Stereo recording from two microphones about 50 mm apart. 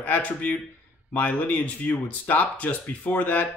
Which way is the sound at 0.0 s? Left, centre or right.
Left.